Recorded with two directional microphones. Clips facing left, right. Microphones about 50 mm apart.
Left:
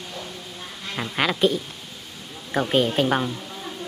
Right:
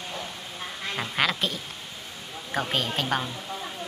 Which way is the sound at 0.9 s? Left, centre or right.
Centre.